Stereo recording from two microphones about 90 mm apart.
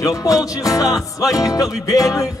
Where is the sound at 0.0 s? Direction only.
40° left (ahead or behind).